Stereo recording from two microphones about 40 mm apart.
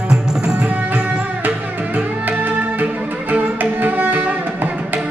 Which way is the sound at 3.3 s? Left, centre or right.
Right.